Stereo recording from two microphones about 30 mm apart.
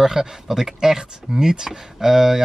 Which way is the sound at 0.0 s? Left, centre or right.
Centre.